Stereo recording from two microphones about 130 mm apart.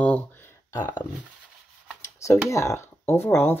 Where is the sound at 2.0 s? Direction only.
25° left (ahead or behind).